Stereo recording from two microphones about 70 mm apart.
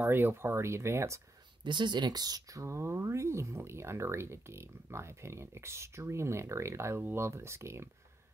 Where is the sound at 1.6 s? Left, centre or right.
Right.